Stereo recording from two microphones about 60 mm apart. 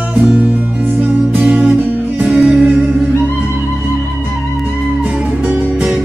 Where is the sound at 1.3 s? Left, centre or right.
Right.